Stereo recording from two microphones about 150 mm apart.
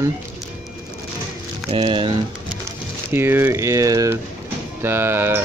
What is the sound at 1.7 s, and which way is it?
Speech, 35° right (ahead or behind).